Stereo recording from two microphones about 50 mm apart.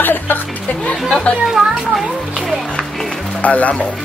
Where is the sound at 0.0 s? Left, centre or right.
Left.